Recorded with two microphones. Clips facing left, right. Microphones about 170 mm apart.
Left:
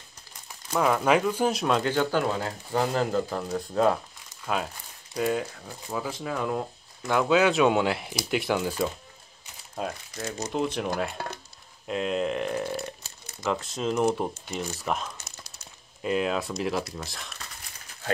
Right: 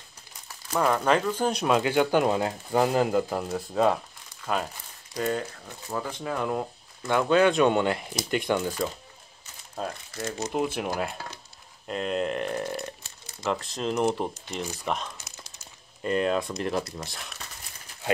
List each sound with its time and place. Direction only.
0.7 s speech: 5° left (ahead or behind); by 3.4 s 15° right (ahead or behind)
3.4 s speech: 5° right (ahead or behind)
5.1 s speech: 5° left (ahead or behind)
10.1 s speech: 5° right (ahead or behind)